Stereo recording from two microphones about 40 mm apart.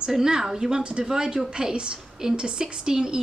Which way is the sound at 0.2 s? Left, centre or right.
Centre.